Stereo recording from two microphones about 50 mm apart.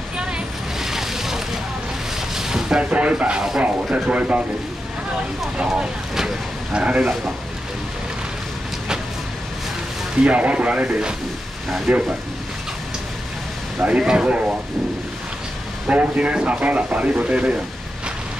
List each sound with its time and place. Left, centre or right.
0.2 s vehicle: centre
0.8 s a sound: centre
2.1 s boat: centre
2.9 s speech: right
5.7 s speech: centre
10.2 s speech: right
13.8 s speech: centre
15.9 s speech: right